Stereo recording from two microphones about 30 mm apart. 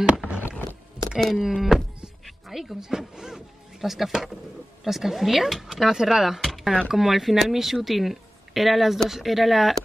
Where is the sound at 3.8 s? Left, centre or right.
Centre.